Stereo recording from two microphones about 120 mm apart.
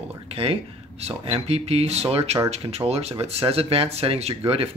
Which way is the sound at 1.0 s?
55° right (ahead or behind).